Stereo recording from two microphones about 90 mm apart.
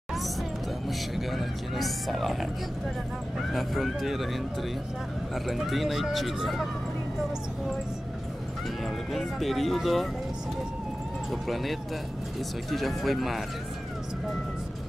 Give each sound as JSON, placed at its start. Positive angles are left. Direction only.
{"t": 0.8, "sound": "speech", "side_deg": 0}
{"t": 8.8, "sound": "speech", "side_deg": 0}
{"t": 11.2, "sound": "speech", "side_deg": 0}